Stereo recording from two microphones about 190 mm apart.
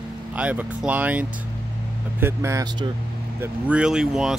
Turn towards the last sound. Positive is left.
turn(degrees=-5)  # may be behind; listen again after turning